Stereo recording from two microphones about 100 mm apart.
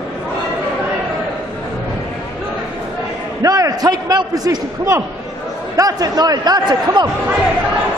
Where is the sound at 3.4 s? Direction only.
35° right (ahead or behind).